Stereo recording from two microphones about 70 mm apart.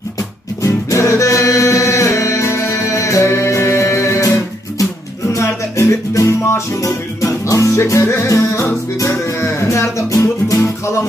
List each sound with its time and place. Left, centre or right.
0.6 s music: left
5.3 s music: left